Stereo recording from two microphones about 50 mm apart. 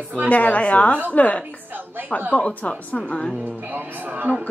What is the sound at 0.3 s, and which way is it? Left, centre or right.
Speech, left.